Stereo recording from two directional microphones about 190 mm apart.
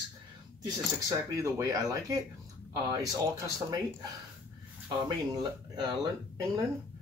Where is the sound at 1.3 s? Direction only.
15° right (ahead or behind).